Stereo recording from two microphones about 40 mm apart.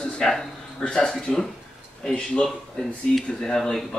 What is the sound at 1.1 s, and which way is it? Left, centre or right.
Speech, centre.